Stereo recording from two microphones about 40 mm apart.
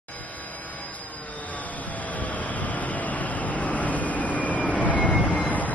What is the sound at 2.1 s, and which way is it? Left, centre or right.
Vehicle, left.